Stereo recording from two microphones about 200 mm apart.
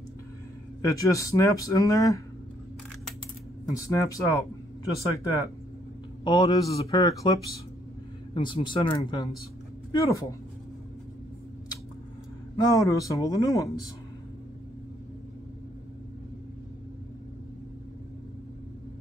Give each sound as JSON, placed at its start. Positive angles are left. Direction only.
{"t": 0.8, "sound": "speech", "side_deg": 15}
{"t": 3.7, "sound": "speech", "side_deg": 15}
{"t": 8.4, "sound": "speech", "side_deg": 25}
{"t": 12.5, "sound": "speech", "side_deg": 15}